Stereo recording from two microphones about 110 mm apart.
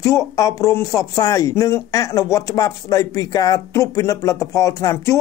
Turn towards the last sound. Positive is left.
turn(degrees=30)  # may be behind; listen again after turning